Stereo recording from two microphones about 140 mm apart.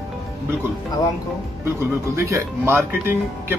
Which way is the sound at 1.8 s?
20° right (ahead or behind).